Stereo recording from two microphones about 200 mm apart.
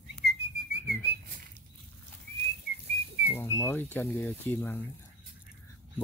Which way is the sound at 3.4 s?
10° left (ahead or behind).